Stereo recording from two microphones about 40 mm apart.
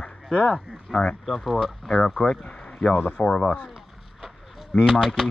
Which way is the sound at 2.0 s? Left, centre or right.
Centre.